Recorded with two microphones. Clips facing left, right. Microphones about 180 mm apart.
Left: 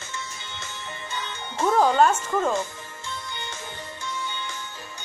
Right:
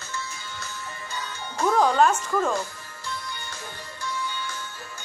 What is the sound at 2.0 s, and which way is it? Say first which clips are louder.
Speech: left 1 dB; 10° left (ahead or behind).